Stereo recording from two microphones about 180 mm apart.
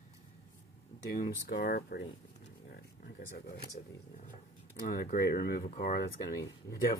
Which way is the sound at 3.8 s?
45° left (ahead or behind).